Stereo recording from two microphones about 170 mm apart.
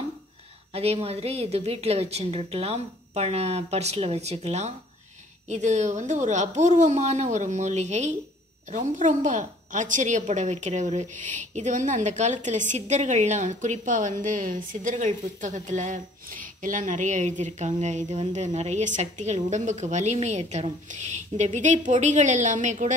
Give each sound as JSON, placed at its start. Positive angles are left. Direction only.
{"t": 0.7, "sound": "a woman's voice", "side_deg": -35}